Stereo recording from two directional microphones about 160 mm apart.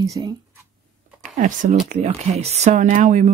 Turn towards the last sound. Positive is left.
turn(degrees=-50)  # may be behind; listen again after turning